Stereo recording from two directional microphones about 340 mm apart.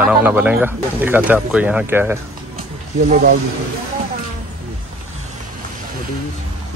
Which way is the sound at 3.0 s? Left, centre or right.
Right.